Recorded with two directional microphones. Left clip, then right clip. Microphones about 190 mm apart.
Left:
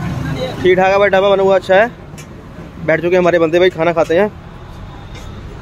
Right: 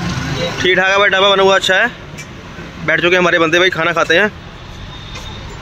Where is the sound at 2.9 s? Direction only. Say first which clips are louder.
Even; 5° left (ahead or behind).